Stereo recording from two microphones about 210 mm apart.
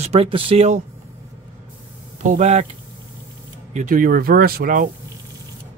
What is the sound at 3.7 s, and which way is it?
Speech, 35° right (ahead or behind).